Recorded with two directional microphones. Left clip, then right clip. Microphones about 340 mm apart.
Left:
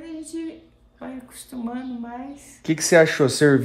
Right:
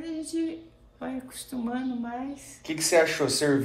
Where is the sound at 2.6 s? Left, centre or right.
Left.